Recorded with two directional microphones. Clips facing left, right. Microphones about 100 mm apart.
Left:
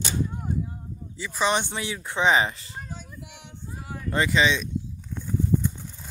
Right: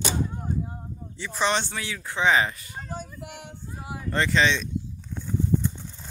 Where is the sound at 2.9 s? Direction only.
50° right (ahead or behind).